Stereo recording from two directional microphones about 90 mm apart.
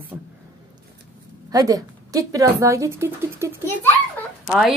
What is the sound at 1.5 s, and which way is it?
Speech, 40° right (ahead or behind).